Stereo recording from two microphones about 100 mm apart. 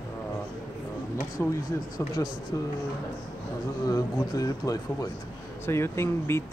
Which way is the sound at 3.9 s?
35° left (ahead or behind).